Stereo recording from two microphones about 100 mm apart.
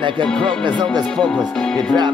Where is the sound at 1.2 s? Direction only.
10° left (ahead or behind).